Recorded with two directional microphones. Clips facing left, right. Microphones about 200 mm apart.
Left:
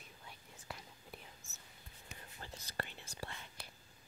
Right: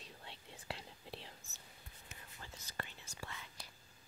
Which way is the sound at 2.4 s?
35° left (ahead or behind).